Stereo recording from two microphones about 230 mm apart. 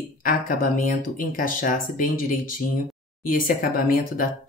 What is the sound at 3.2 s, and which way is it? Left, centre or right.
Speech, left.